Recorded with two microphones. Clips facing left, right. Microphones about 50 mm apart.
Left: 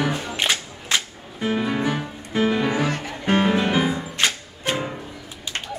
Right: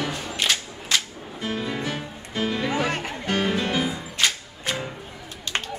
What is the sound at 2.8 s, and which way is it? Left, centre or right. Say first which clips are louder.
Music: left 1 dB; right.